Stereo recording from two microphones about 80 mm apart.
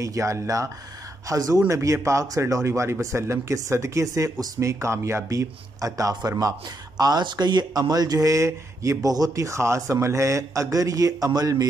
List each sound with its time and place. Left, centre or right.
0.0 s speech: right
7.0 s speech: right